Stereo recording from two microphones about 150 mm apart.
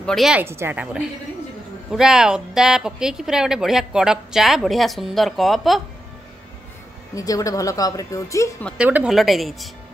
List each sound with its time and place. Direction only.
0.0 s a woman's voice: centre (ahead or behind)
0.4 s a woman's voice: 15° right (ahead or behind)
7.2 s speech: 25° left (ahead or behind)
8.7 s a woman's voice: 10° right (ahead or behind)